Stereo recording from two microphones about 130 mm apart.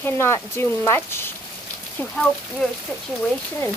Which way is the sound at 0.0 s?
20° left (ahead or behind).